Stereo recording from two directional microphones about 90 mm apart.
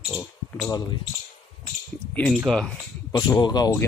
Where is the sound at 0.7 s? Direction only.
50° left (ahead or behind).